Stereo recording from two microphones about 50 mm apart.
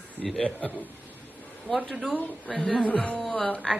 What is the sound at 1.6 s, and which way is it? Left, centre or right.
A man's voice, centre.